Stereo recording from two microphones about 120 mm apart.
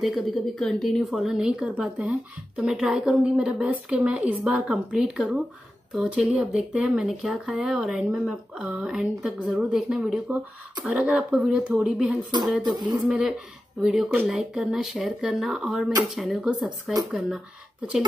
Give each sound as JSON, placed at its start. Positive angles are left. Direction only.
{"t": 0.0, "sound": "a woman's voice", "side_deg": 0}
{"t": 12.6, "sound": "speech", "side_deg": -35}
{"t": 13.0, "sound": "a woman's voice", "side_deg": -10}